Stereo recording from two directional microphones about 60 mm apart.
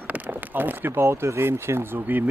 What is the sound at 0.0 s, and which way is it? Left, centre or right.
Speech, right.